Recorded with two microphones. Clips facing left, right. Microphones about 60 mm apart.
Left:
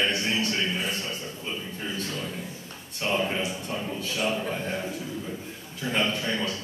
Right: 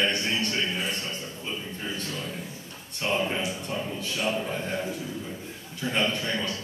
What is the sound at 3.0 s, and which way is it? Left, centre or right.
Speech, centre.